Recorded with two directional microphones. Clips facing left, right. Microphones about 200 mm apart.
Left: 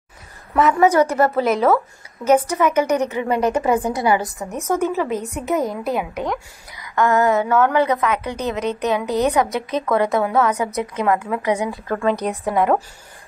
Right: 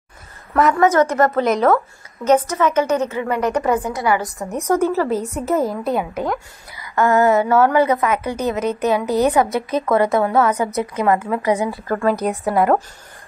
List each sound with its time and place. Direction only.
0.7 s a woman's voice: 15° left (ahead or behind)
5.4 s a woman's voice: 5° right (ahead or behind)